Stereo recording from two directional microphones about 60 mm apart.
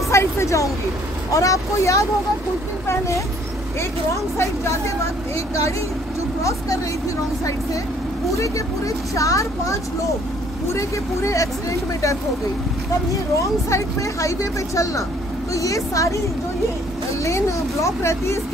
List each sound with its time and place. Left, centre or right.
0.1 s a sound: left
1.3 s speech: left
4.1 s speech: left
8.4 s speech: left
10.7 s speech: left
13.1 s speech: left
17.2 s speech: left